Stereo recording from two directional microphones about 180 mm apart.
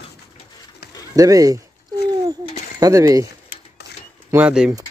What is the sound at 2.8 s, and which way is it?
Speech, 20° right (ahead or behind).